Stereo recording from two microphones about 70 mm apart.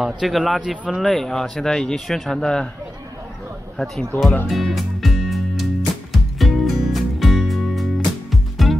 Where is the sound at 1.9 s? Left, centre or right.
Centre.